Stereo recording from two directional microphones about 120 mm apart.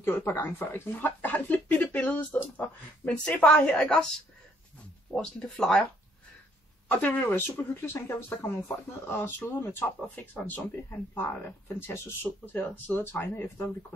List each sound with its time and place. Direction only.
0.0 s speech: 15° left (ahead or behind)
5.1 s speech: 5° left (ahead or behind)
6.9 s speech: 15° left (ahead or behind)